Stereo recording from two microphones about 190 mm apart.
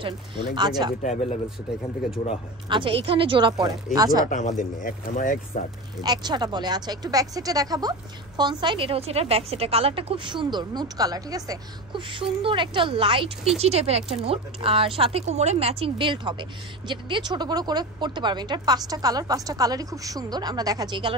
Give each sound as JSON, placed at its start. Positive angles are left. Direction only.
{"t": 0.6, "sound": "speech", "side_deg": -20}
{"t": 1.0, "sound": "speech", "side_deg": 35}
{"t": 2.7, "sound": "speech", "side_deg": -25}
{"t": 4.3, "sound": "speech", "side_deg": 40}
{"t": 6.0, "sound": "speech", "side_deg": -20}